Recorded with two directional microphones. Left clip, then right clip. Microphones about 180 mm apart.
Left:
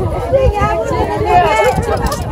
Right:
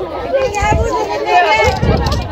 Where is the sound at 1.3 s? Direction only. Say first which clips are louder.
Even; 55° left (ahead or behind).